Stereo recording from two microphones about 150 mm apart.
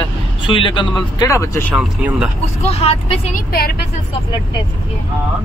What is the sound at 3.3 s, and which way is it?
Speech, 90° left.